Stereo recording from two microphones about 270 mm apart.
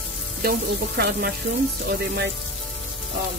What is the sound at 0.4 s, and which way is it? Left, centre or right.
Speech, right.